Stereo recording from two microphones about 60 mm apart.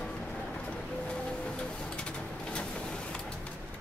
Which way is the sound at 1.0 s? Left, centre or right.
Centre.